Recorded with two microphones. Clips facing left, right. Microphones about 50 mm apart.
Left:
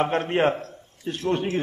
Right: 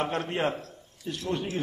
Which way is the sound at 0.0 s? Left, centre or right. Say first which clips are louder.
Left 7 dB; left.